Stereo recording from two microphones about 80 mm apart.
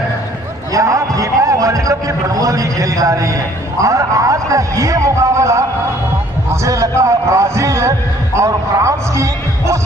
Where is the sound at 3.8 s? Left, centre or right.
Right.